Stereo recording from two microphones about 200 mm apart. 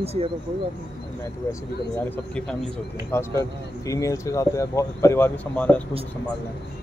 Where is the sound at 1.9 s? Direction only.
10° left (ahead or behind).